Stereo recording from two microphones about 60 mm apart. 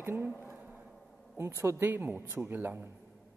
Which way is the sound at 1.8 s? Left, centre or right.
Right.